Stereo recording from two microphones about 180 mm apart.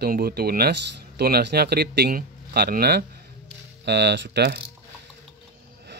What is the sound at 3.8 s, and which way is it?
Speech, 70° right (ahead or behind).